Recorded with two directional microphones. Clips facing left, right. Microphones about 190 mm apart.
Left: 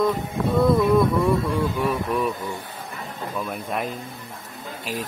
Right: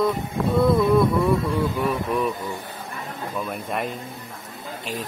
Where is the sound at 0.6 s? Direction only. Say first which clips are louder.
Even; centre (ahead or behind).